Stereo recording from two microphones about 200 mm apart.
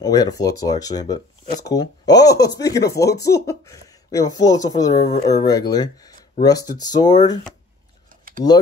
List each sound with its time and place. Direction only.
0.0 s speech: 20° left (ahead or behind)
8.1 s typing: 45° right (ahead or behind)